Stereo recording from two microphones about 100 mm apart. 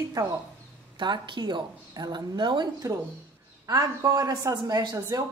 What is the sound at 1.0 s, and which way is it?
A woman's voice, 50° right (ahead or behind).